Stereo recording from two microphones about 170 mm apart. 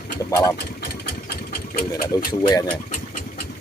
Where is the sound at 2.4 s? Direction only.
20° left (ahead or behind).